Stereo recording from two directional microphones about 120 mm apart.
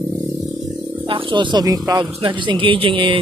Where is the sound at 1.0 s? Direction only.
45° right (ahead or behind).